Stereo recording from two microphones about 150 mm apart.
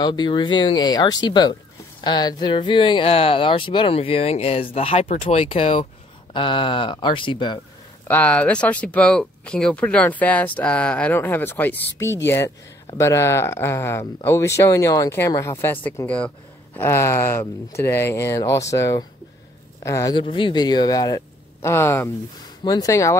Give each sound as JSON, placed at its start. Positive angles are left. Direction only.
{"t": 0.0, "sound": "speech", "side_deg": 30}
{"t": 5.1, "sound": "speech", "side_deg": 50}
{"t": 5.5, "sound": "speech", "side_deg": 35}
{"t": 8.1, "sound": "speech", "side_deg": 10}
{"t": 20.2, "sound": "speech", "side_deg": 35}